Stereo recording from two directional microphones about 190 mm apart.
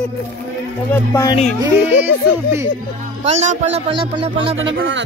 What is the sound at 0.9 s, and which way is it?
Speech, 15° left (ahead or behind).